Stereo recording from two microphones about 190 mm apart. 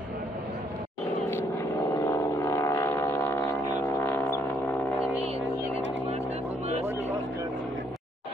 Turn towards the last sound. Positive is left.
turn(degrees=-35)  # may be behind; listen again after turning